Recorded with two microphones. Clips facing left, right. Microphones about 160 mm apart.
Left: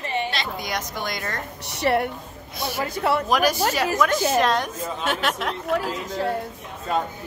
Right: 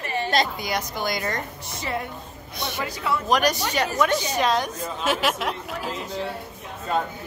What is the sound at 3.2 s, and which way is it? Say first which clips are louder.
A woman's voice: left 1 dB; 5° left (ahead or behind).